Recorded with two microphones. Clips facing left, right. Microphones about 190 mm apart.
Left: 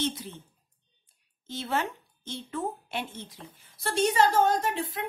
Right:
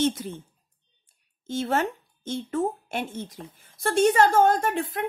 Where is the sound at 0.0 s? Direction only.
45° right (ahead or behind).